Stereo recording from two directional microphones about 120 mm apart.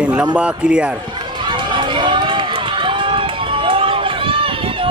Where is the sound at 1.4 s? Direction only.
40° right (ahead or behind).